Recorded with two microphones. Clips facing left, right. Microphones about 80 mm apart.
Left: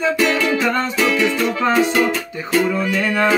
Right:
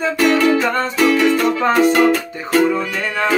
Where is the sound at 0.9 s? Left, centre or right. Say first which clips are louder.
Right 4 dB; right.